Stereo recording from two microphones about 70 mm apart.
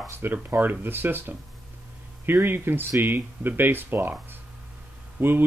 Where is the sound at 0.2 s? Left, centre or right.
Right.